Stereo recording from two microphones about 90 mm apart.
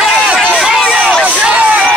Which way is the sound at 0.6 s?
5° right (ahead or behind).